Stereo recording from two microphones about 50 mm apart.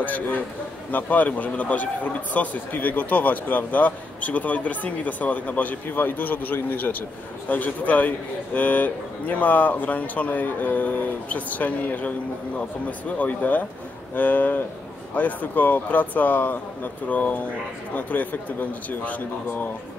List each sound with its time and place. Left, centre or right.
0.0 s speech: left
13.2 s speech: left